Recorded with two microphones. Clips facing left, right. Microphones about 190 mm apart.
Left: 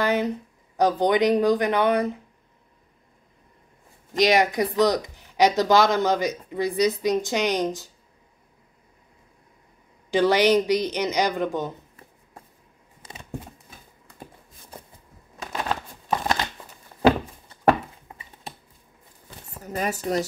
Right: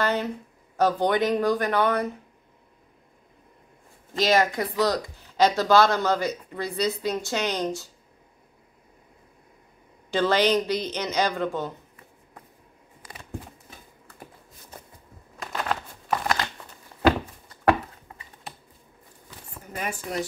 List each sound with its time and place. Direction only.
0.0 s speech: 15° left (ahead or behind)
4.1 s speech: 15° left (ahead or behind)
10.1 s speech: 15° left (ahead or behind)
13.0 s a sound: 25° left (ahead or behind)
16.1 s crumpling: 20° left (ahead or behind)
19.6 s speech: 40° left (ahead or behind)